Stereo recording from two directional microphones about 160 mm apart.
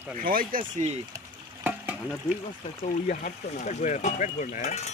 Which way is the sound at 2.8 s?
60° left (ahead or behind).